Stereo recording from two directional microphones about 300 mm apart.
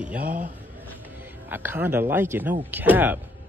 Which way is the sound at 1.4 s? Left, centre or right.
Centre.